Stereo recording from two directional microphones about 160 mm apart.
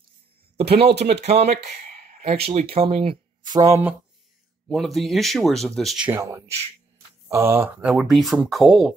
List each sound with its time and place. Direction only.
0.6 s speech: 40° right (ahead or behind)
0.9 s speech: 90° right
1.2 s speech: 45° right (ahead or behind); by 3.9 s 20° right (ahead or behind)
4.6 s speech: centre (ahead or behind)
6.0 s speech: 15° right (ahead or behind); by 8.9 s centre (ahead or behind)